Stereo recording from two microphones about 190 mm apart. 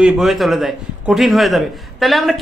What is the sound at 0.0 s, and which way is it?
A woman's voice, centre (ahead or behind).